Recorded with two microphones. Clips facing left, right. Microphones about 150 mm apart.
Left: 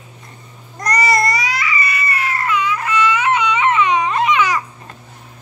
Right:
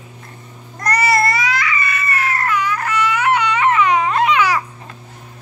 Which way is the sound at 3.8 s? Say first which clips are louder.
Right 1 dB; centre (ahead or behind).